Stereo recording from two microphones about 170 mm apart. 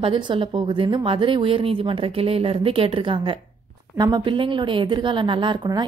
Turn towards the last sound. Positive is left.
turn(degrees=-25)  # may be behind; listen again after turning